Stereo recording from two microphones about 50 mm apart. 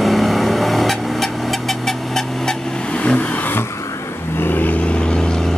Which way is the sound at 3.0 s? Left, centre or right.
Left.